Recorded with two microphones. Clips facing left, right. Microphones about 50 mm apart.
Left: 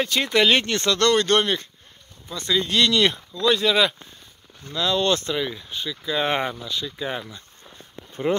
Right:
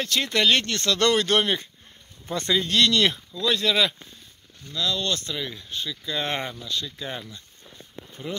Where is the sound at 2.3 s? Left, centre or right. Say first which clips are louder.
Right 1 dB; right.